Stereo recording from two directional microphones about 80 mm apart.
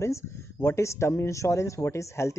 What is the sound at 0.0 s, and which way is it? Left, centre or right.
Speech, left.